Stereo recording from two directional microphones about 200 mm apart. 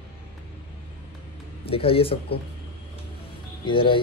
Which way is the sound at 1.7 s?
30° left (ahead or behind).